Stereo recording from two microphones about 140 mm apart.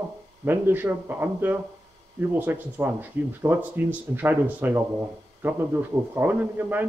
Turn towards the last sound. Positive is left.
turn(degrees=-10)  # may be behind; listen again after turning